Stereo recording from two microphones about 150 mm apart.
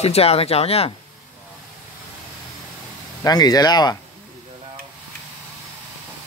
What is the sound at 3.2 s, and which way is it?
Speech, 25° left (ahead or behind).